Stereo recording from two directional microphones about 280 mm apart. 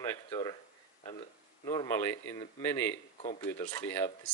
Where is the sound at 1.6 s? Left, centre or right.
Centre.